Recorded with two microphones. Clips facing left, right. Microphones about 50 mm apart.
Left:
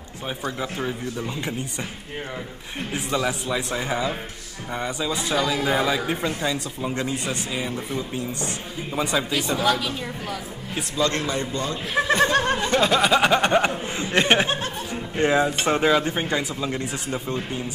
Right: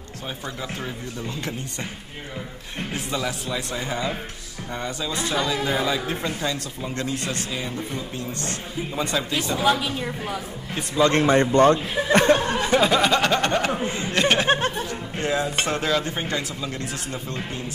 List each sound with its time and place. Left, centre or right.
0.6 s a man's voice: centre
3.1 s a man's voice: centre
9.6 s a woman's voice: centre
11.0 s speech: right
12.6 s a sound: centre
13.2 s a sound: centre
14.1 s speech: left
14.9 s music: left
15.6 s speech: centre